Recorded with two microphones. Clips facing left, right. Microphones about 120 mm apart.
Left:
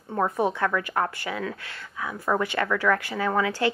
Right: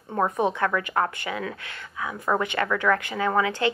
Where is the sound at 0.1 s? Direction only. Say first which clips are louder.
Right 1 dB; 25° right (ahead or behind).